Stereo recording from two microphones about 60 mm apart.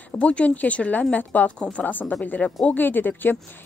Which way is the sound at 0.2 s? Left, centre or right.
Left.